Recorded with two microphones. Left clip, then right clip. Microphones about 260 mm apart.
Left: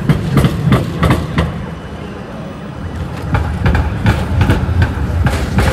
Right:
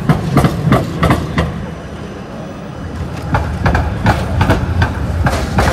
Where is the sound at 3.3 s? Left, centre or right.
Centre.